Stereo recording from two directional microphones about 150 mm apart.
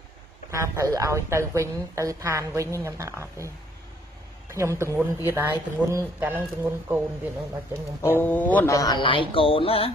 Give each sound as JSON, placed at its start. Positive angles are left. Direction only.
{"t": 0.5, "sound": "a woman's voice", "side_deg": -20}
{"t": 4.6, "sound": "a woman's voice", "side_deg": -20}
{"t": 8.0, "sound": "speech", "side_deg": 15}
{"t": 8.7, "sound": "speech", "side_deg": 30}